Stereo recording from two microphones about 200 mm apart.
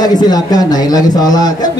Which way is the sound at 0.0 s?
20° left (ahead or behind).